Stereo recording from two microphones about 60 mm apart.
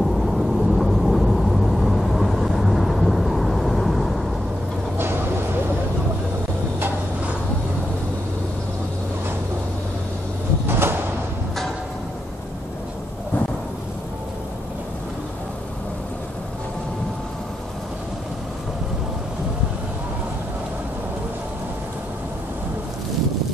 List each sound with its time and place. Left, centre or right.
0.0 s vehicle: centre
4.9 s vehicle: right
10.7 s sliding door: right